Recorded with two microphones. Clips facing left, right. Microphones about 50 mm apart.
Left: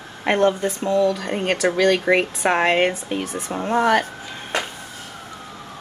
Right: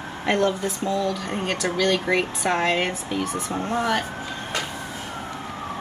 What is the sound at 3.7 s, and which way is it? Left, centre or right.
Speech, left.